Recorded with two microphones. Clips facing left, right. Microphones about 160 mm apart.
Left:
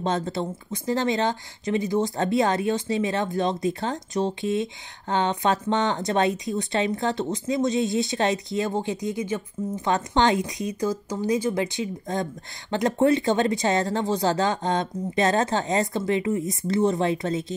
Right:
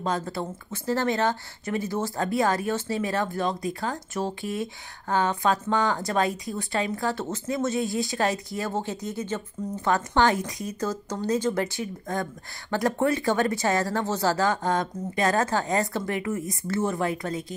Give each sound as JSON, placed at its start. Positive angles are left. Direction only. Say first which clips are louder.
{"t": 0.0, "sound": "speech", "louder": "left 3 dB", "side_deg": 25}